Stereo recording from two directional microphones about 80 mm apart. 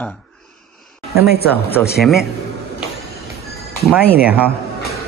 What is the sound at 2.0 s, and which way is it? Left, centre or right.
Speech, centre.